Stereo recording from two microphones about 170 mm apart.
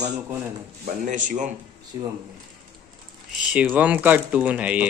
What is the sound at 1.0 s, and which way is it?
Speech, 50° right (ahead or behind).